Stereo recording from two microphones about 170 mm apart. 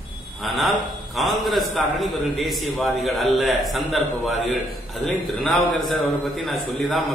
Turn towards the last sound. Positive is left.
turn(degrees=0)  # may be behind; listen again after turning